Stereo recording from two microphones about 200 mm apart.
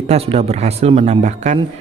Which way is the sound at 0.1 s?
30° right (ahead or behind).